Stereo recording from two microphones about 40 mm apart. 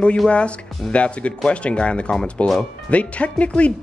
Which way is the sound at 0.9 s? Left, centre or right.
Left.